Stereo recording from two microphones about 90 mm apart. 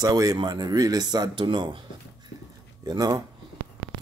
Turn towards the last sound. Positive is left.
turn(degrees=-45)  # may be behind; listen again after turning